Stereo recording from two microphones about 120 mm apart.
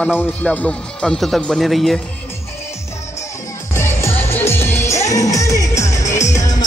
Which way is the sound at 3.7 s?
20° left (ahead or behind).